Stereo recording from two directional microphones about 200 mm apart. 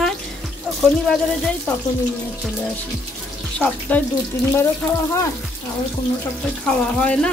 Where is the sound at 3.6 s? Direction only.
5° left (ahead or behind).